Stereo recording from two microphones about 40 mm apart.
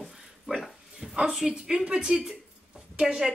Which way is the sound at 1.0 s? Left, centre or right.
Centre.